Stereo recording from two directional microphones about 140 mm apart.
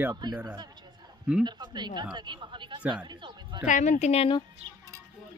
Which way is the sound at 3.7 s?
60° left (ahead or behind).